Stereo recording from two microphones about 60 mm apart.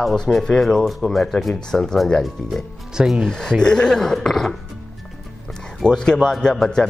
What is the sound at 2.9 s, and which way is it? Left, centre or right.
Speech, centre.